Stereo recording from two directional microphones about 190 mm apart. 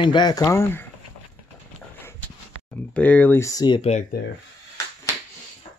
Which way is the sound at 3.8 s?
35° left (ahead or behind).